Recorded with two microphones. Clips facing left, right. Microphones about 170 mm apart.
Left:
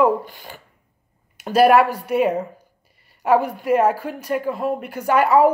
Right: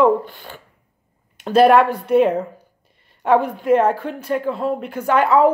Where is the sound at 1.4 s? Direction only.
10° left (ahead or behind).